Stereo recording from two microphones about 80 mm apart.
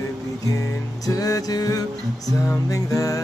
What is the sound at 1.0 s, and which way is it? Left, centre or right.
Music, left.